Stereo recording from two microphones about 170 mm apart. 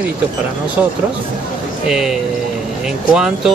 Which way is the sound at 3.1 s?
5° right (ahead or behind).